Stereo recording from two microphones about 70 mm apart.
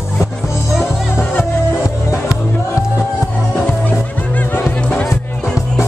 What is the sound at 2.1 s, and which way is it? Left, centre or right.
Music, left.